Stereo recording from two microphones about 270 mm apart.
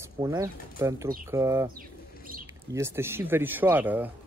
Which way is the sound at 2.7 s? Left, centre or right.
Centre.